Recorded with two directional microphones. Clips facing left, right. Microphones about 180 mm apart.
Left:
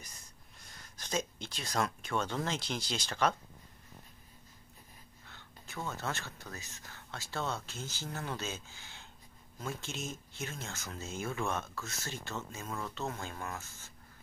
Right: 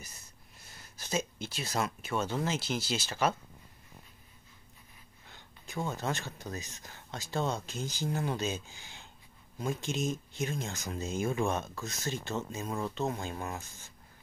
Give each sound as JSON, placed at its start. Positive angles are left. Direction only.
{"t": 0.0, "sound": "speech", "side_deg": -5}
{"t": 5.3, "sound": "speech", "side_deg": -15}